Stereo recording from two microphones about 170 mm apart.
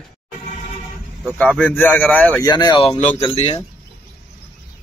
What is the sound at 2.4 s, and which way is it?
Speech, 25° left (ahead or behind).